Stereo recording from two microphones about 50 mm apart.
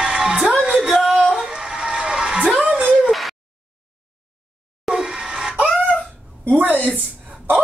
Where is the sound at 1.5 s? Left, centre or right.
Centre.